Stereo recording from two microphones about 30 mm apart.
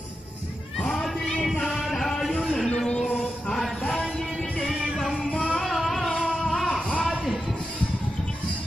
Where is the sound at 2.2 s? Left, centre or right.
Centre.